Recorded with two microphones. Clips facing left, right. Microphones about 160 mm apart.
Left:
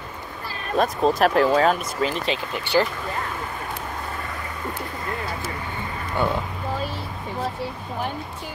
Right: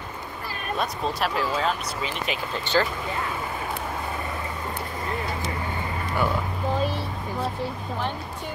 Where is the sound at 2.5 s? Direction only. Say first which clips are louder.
Left 2 dB; 15° left (ahead or behind).